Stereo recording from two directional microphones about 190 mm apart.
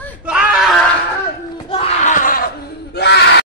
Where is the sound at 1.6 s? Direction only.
30° left (ahead or behind); by 2.5 s 45° left (ahead or behind).